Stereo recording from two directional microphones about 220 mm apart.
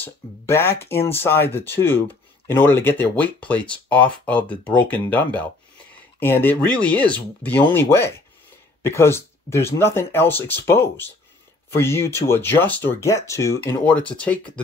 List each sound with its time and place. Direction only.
0.0 s speech: 10° left (ahead or behind)